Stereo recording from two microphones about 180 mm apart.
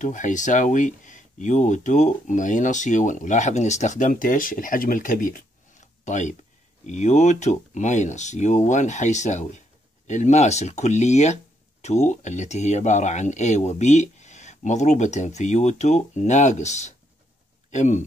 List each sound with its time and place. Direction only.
0.0 s speech: 45° left (ahead or behind)